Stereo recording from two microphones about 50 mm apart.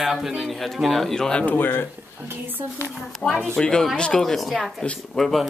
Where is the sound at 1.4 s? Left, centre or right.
Left.